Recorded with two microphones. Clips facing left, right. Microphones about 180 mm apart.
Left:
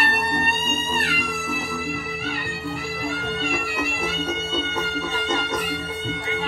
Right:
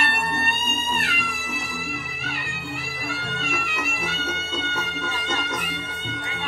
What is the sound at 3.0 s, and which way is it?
Music, 30° left (ahead or behind).